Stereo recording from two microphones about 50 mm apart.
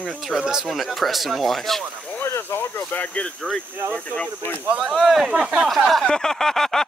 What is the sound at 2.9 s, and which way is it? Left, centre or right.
Speech, left.